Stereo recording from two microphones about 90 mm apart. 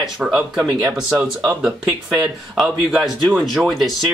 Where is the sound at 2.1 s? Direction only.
Centre (ahead or behind).